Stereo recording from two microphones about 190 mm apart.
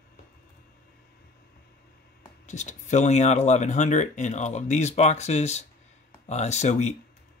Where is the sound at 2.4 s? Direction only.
40° left (ahead or behind).